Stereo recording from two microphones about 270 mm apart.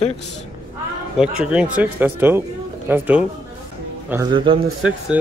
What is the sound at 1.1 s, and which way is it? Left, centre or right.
Speech, centre.